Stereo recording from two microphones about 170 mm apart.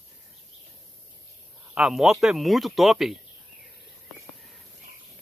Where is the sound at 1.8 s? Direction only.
Centre (ahead or behind).